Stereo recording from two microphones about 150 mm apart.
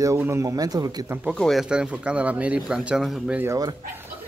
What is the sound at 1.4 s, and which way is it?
Speech, centre (ahead or behind).